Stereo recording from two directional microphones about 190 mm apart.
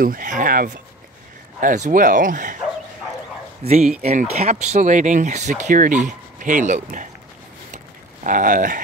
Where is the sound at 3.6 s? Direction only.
35° right (ahead or behind).